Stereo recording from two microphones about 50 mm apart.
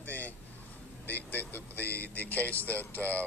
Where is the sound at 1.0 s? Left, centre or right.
Left.